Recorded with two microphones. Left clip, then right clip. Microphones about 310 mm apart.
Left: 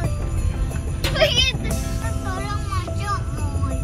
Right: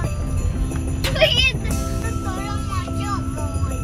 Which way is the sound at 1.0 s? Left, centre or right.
Centre.